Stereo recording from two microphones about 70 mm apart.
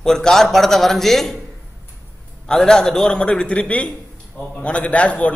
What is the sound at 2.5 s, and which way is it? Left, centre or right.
A man's voice, centre.